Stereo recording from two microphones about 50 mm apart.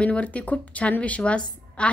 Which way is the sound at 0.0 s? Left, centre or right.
Left.